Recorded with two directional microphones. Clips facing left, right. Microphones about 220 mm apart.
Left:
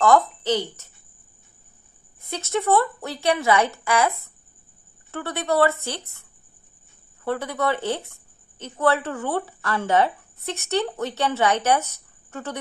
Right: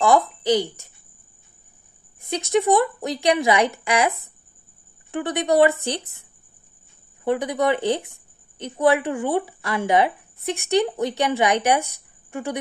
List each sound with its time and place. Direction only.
0.0 s speech: 15° right (ahead or behind)
2.2 s speech: 15° right (ahead or behind)
5.1 s speech: 15° right (ahead or behind)
7.2 s speech: 15° right (ahead or behind)